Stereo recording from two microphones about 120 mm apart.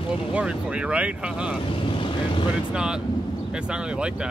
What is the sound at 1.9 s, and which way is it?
Vehicle, 45° left (ahead or behind).